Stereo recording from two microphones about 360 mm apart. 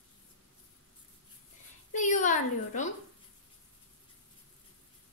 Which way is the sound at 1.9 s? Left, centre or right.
Left.